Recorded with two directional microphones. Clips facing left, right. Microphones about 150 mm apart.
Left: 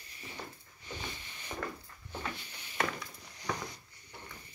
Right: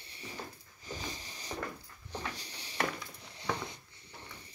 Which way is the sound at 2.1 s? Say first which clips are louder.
Even; 35° right (ahead or behind).